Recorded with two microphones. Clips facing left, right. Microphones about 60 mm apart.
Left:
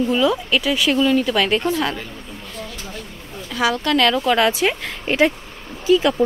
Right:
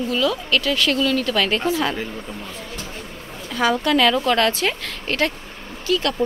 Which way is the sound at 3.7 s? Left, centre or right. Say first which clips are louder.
Right 1 dB; centre.